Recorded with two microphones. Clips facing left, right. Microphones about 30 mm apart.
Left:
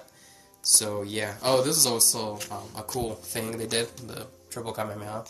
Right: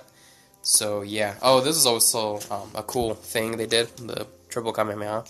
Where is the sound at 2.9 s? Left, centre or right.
Right.